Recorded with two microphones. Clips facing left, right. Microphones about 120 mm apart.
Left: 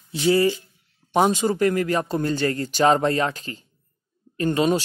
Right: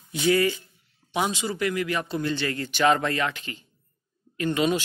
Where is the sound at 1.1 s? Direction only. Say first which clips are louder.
Left 8 dB; 45° left (ahead or behind).